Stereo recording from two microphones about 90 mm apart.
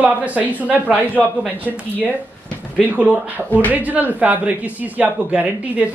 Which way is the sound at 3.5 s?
20° left (ahead or behind).